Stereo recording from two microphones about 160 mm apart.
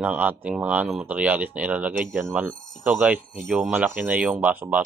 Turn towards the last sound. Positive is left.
turn(degrees=-10)  # may be behind; listen again after turning